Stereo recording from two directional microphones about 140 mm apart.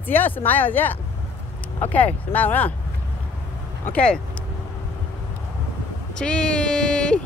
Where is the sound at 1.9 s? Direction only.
10° left (ahead or behind).